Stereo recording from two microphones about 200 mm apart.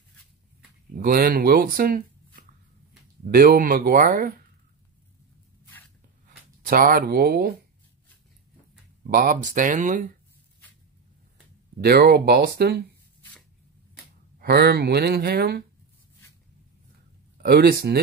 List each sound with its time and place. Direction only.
0.9 s speech: 45° right (ahead or behind)
3.3 s speech: 50° right (ahead or behind)
6.7 s speech: 45° right (ahead or behind)
9.0 s speech: 45° right (ahead or behind)
11.8 s speech: 50° right (ahead or behind)
14.4 s speech: 55° right (ahead or behind)
17.4 s speech: 50° right (ahead or behind)